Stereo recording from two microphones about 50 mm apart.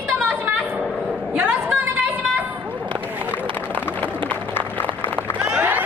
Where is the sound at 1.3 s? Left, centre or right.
Right.